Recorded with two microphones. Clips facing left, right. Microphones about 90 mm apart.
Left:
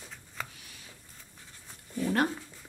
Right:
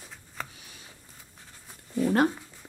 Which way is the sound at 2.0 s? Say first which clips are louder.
Right 5 dB; 25° right (ahead or behind).